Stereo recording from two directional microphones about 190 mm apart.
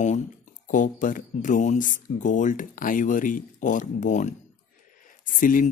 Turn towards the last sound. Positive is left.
turn(degrees=45)  # may be behind; listen again after turning